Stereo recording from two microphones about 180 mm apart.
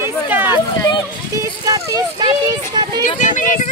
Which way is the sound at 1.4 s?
20° right (ahead or behind).